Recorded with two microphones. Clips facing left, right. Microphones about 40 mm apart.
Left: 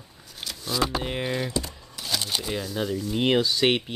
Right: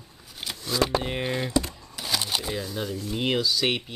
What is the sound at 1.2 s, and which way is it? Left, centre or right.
Speech, centre.